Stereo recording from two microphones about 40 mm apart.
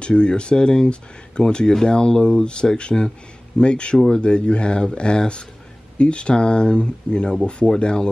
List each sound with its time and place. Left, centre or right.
0.0 s speech: left